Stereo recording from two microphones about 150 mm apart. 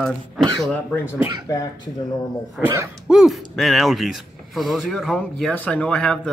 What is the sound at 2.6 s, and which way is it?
Speech, 20° right (ahead or behind).